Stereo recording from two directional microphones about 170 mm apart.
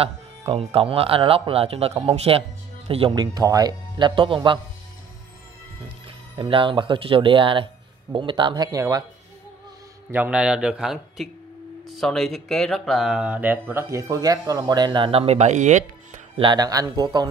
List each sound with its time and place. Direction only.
0.0 s speech: 35° right (ahead or behind)
6.0 s speech: 30° right (ahead or behind)
10.1 s speech: 10° right (ahead or behind); by 15.8 s 45° right (ahead or behind)
16.3 s speech: 25° right (ahead or behind)